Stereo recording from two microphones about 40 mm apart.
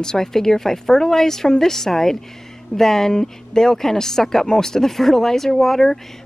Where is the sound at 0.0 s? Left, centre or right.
Centre.